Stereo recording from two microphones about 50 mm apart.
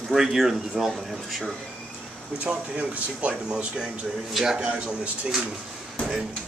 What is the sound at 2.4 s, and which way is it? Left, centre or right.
Speech, right.